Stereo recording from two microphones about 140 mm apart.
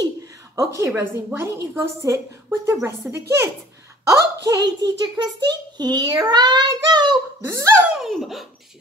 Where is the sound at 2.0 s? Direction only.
20° right (ahead or behind).